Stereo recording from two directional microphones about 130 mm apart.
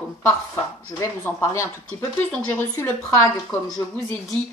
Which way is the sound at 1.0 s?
20° left (ahead or behind).